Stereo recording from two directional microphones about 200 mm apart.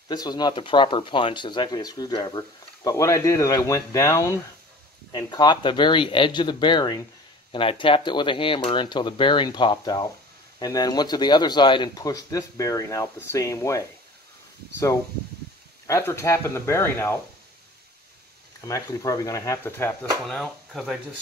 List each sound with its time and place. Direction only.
0.1 s speech: 20° left (ahead or behind)
15.9 s speech: 15° left (ahead or behind)
18.7 s speech: 15° left (ahead or behind)
20.2 s speech: centre (ahead or behind)